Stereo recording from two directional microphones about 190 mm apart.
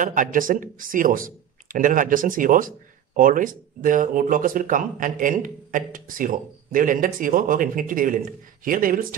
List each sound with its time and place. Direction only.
0.0 s speech: 45° right (ahead or behind)